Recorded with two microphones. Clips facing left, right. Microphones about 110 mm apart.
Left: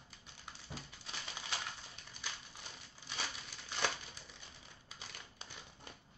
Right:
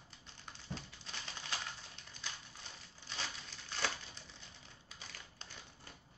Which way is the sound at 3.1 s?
10° left (ahead or behind).